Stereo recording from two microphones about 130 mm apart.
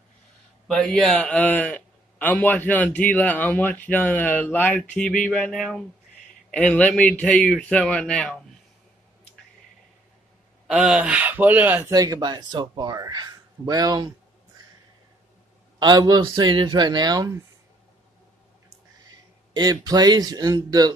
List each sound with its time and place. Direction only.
0.7 s a man's voice: 5° left (ahead or behind)
10.7 s speech: 10° right (ahead or behind)
11.9 s speech: 30° right (ahead or behind)
15.8 s speech: 30° right (ahead or behind)
19.5 s speech: 30° right (ahead or behind)